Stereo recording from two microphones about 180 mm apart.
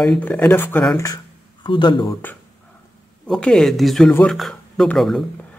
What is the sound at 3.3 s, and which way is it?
Speech, 5° left (ahead or behind).